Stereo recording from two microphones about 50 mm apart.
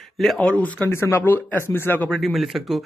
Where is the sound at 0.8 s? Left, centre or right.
Left.